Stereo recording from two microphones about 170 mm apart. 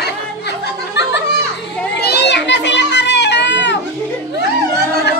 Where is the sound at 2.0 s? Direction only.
85° left.